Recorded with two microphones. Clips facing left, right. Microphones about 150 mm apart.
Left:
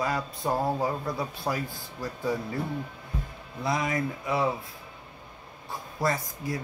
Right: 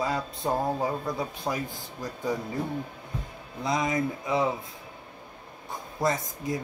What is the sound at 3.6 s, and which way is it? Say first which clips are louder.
Speech: right 1 dB; 20° right (ahead or behind).